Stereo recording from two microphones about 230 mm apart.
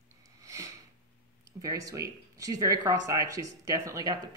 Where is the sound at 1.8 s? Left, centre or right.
Centre.